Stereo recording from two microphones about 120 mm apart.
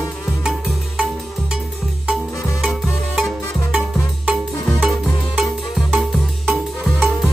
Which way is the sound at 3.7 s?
10° right (ahead or behind).